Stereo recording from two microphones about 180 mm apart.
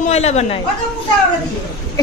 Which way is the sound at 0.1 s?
35° left (ahead or behind).